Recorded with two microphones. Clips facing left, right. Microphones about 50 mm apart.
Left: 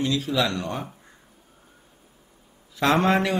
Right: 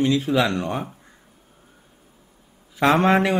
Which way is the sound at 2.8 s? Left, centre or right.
Right.